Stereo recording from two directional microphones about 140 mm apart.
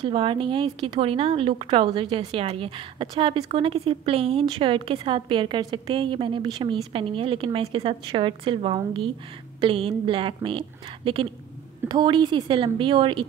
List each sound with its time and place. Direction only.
0.0 s speech: 40° right (ahead or behind)
11.9 s speech: 35° right (ahead or behind)